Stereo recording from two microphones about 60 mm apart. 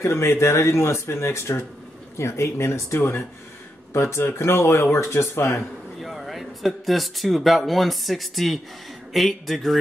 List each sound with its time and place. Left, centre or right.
0.0 s speech: left
5.9 s speech: centre